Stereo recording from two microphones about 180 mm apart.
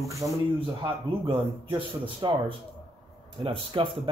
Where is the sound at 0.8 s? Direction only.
30° right (ahead or behind).